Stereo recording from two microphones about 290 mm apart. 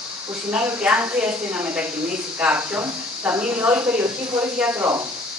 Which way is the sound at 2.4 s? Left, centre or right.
Centre.